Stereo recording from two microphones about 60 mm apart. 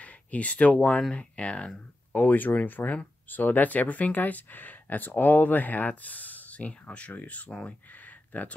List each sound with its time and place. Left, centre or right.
0.0 s a sound: left
0.7 s speech: left
2.1 s speech: left